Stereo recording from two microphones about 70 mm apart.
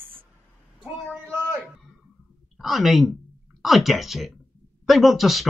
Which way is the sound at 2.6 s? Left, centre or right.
Centre.